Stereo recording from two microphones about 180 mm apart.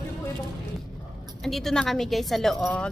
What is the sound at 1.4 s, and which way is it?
A woman's voice, centre (ahead or behind).